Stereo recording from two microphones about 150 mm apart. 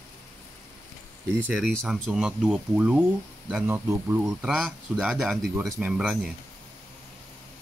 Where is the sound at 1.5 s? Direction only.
5° left (ahead or behind); by 4.3 s 20° right (ahead or behind).